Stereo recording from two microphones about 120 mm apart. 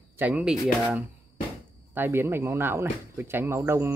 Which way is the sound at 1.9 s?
20° right (ahead or behind).